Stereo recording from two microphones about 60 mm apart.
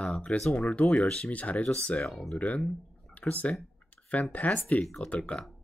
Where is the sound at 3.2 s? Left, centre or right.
Left.